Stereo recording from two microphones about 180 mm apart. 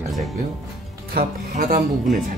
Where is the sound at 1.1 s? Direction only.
50° right (ahead or behind).